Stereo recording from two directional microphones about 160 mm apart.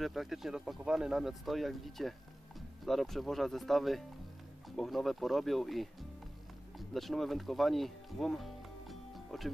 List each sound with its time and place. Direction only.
0.0 s speech: centre (ahead or behind)